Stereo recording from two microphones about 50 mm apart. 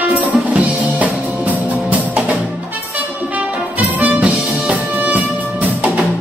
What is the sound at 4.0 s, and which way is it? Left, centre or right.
Music, right.